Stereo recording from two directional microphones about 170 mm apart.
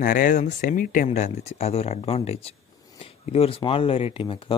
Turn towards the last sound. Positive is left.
turn(degrees=30)  # may be behind; listen again after turning